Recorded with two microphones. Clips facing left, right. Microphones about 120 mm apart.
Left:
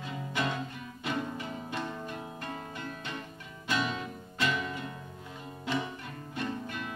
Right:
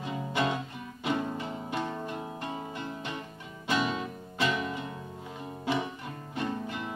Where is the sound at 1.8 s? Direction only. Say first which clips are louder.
Right 3 dB; 30° right (ahead or behind).